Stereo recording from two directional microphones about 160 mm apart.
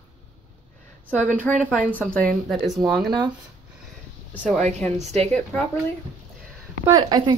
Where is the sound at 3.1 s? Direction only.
25° right (ahead or behind).